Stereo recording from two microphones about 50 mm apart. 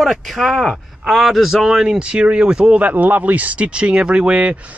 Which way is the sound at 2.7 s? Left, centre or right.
Right.